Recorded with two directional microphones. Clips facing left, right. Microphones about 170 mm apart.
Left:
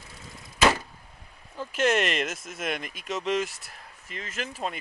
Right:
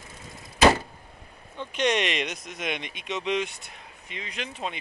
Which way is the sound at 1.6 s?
5° left (ahead or behind).